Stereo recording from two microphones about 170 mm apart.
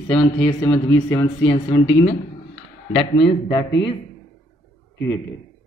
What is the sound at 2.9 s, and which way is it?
A man's voice, 30° left (ahead or behind).